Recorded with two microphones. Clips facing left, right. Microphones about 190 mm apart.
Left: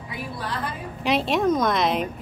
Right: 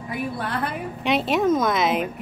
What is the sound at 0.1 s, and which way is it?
Speech, 55° right (ahead or behind).